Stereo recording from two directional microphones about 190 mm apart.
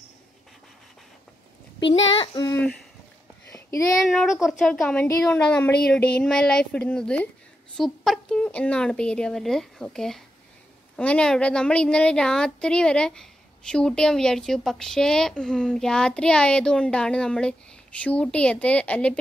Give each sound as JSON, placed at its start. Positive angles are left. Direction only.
{"t": 2.1, "sound": "child singing", "side_deg": 20}
{"t": 4.0, "sound": "a woman's voice", "side_deg": 0}